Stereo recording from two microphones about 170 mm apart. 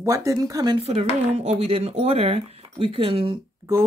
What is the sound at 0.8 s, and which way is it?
Speech, 40° right (ahead or behind).